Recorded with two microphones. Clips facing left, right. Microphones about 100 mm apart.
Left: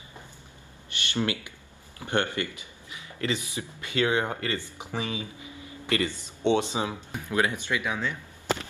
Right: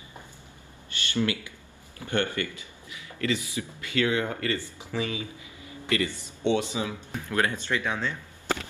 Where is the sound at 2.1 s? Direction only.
20° left (ahead or behind).